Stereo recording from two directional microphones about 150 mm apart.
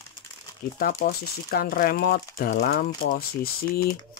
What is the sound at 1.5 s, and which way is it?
Speech, 85° left.